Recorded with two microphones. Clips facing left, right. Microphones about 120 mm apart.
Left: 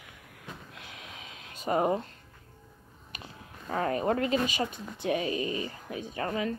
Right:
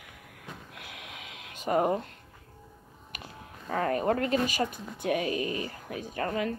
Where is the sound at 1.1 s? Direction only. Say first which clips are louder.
Right 1 dB; 35° left (ahead or behind).